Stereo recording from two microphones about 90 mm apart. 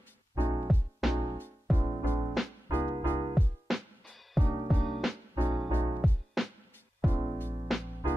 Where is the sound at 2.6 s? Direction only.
25° right (ahead or behind).